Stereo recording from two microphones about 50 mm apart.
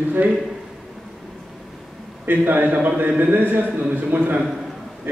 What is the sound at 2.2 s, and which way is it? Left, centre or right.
A man's voice, right.